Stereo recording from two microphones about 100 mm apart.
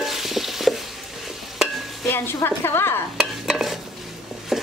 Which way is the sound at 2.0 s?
25° left (ahead or behind).